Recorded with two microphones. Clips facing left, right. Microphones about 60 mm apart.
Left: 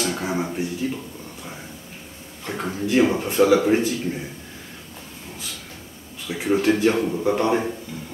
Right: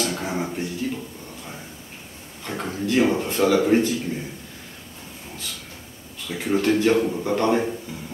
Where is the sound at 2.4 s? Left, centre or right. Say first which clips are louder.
Left 1 dB; centre.